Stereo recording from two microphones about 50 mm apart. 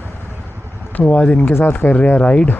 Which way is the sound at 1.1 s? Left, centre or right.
Left.